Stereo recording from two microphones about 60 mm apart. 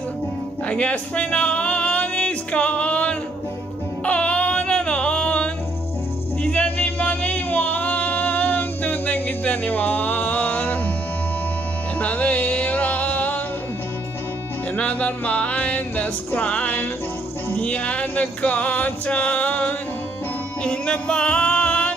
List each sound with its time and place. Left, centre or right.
0.7 s music: left
4.0 s a sound: left
6.4 s music: left
12.0 s music: left
14.8 s music: left